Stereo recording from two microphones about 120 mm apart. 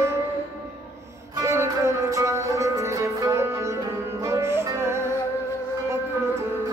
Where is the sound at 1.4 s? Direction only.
25° right (ahead or behind).